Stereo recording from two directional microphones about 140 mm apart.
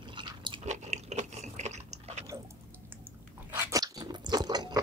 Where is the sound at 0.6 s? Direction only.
55° right (ahead or behind).